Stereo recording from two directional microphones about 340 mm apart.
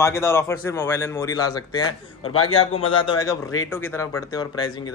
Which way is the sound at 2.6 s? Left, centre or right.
Centre.